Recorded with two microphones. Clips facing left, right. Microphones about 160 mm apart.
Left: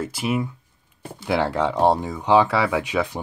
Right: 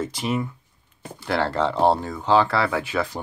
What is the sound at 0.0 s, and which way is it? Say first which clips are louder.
Speech: left 1 dB; 5° left (ahead or behind).